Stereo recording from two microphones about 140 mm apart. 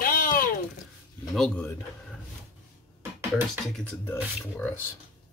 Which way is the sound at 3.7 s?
15° left (ahead or behind).